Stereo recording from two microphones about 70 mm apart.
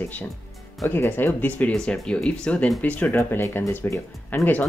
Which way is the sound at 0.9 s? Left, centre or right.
Left.